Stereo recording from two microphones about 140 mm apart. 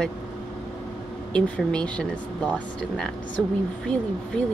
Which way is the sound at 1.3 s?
5° left (ahead or behind).